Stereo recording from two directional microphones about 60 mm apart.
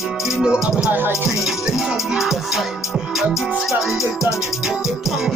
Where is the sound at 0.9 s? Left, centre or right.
Right.